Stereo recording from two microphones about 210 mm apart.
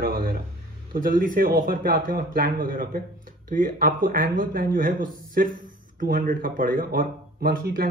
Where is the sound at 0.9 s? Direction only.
40° right (ahead or behind).